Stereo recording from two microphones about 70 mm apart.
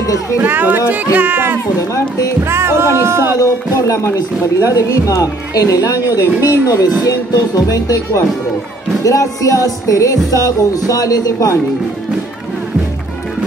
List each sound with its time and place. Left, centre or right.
0.0 s music: left
0.4 s speech: right
3.3 s speech: left
6.5 s music: left